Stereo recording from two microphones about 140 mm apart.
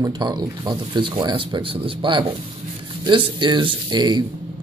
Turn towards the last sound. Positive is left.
turn(degrees=-30)  # may be behind; listen again after turning